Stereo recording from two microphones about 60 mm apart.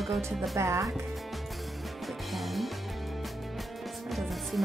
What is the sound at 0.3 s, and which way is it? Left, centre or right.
Speech, centre.